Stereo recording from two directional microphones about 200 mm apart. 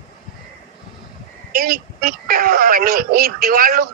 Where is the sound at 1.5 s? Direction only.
45° right (ahead or behind).